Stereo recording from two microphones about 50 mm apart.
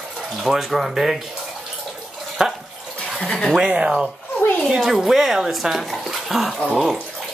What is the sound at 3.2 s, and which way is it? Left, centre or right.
Speech, centre.